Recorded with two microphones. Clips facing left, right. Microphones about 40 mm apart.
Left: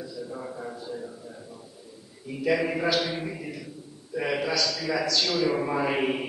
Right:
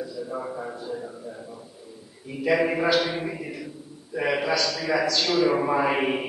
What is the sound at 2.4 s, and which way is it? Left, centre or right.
A man's voice, centre.